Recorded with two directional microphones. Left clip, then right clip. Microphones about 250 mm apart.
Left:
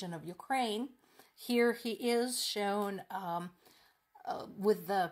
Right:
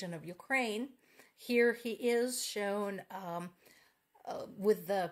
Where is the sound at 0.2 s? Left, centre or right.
Left.